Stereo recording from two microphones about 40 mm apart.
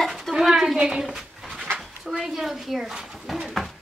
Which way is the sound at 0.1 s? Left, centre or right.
Centre.